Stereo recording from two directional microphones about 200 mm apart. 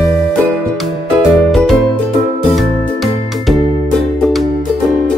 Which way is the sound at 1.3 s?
Centre (ahead or behind).